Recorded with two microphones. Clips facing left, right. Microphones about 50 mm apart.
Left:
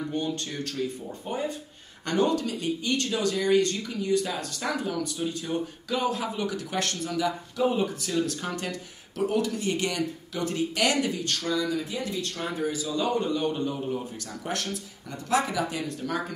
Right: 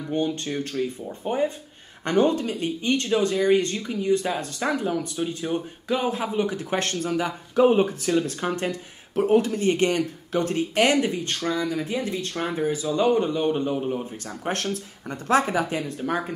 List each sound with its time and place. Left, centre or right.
0.1 s speech: right
14.4 s speech: right